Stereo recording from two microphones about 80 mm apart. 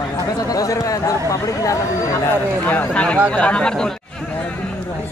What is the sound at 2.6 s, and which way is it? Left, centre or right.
Speech, left.